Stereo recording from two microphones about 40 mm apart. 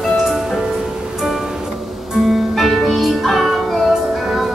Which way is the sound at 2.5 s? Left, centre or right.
Centre.